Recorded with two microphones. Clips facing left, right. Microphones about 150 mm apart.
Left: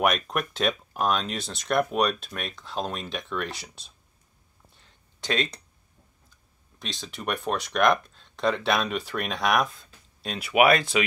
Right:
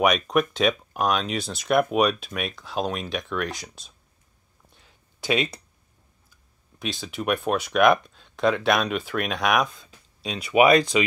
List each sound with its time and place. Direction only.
0.0 s speech: centre (ahead or behind)
4.7 s a sound: 5° right (ahead or behind)
6.8 s speech: 5° right (ahead or behind)